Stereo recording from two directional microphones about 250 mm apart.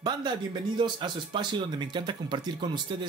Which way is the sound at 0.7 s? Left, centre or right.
Centre.